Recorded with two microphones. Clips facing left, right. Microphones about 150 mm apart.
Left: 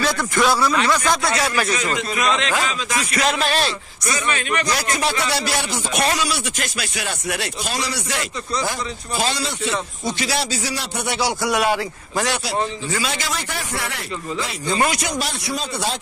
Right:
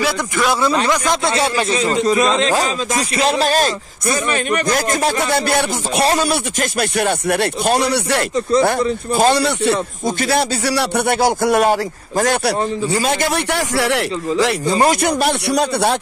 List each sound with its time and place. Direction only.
0.5 s a man's voice: 20° right (ahead or behind); by 13.3 s 50° right (ahead or behind)
13.5 s speech: 90° right
14.7 s a man's voice: 35° right (ahead or behind)
15.0 s speech: 60° right (ahead or behind)